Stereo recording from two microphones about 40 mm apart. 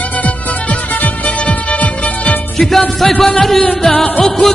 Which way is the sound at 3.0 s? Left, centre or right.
Centre.